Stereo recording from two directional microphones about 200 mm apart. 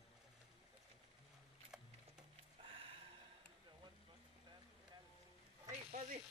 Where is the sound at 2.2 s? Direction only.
25° right (ahead or behind).